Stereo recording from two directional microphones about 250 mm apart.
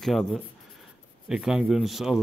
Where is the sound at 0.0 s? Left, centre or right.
Centre.